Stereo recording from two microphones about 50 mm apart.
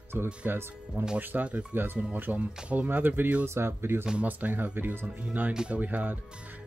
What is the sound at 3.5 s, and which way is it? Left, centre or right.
Speech, right.